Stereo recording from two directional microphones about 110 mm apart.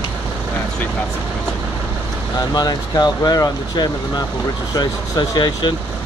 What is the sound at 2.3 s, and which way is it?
Speech, 35° left (ahead or behind).